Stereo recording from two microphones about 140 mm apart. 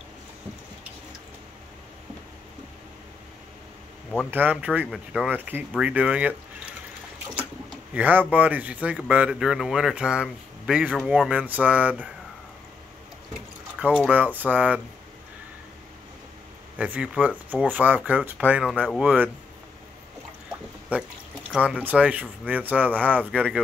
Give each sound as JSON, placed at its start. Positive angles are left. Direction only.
{"t": 4.3, "sound": "speech", "side_deg": -10}
{"t": 7.9, "sound": "speech", "side_deg": -10}
{"t": 13.7, "sound": "speech", "side_deg": -10}
{"t": 16.7, "sound": "speech", "side_deg": -10}
{"t": 21.5, "sound": "speech", "side_deg": -5}